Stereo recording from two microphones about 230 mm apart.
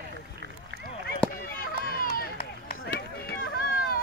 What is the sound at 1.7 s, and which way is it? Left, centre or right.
Run, left.